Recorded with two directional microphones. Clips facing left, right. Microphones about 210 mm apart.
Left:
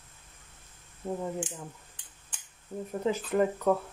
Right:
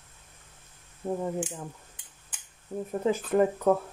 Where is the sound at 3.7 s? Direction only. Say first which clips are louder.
Right 2 dB; 50° right (ahead or behind).